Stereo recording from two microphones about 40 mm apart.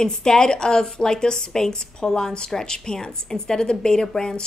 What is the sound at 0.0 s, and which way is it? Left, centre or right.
A woman's voice, centre.